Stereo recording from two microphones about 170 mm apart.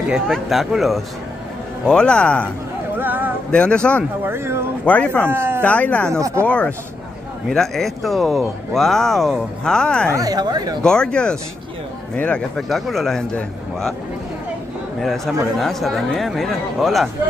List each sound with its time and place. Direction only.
0.1 s speech: centre (ahead or behind)
3.0 s music: 10° right (ahead or behind)
3.5 s speech: 5° left (ahead or behind)
4.2 s speech: 15° right (ahead or behind)
4.8 s speech: 10° left (ahead or behind)
5.3 s speech: 15° right (ahead or behind)
5.6 s speech: 10° left (ahead or behind)
10.1 s speech: 20° right (ahead or behind)
10.8 s speech: 5° left (ahead or behind)
15.0 s speech: centre (ahead or behind)